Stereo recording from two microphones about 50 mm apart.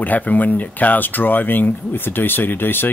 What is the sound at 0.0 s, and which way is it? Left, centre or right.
Speech, left.